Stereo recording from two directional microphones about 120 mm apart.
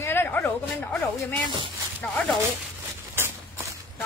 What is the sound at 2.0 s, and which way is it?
Speech, 10° left (ahead or behind).